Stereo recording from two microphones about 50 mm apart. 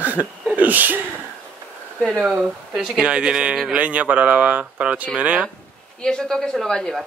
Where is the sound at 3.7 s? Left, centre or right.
Right.